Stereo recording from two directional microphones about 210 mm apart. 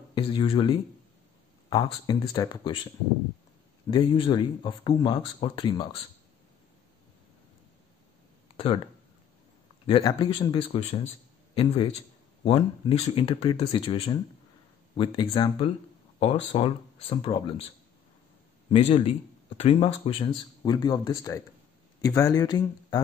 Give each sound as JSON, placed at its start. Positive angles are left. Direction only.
{"t": 0.1, "sound": "speech", "side_deg": 25}
{"t": 3.9, "sound": "speech", "side_deg": 25}
{"t": 8.5, "sound": "speech", "side_deg": 25}
{"t": 9.8, "sound": "a man's voice", "side_deg": 20}
{"t": 18.7, "sound": "speech", "side_deg": 30}